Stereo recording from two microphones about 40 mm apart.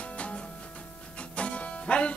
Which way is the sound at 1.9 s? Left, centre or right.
Left.